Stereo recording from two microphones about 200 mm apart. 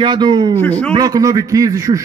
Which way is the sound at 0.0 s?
20° right (ahead or behind).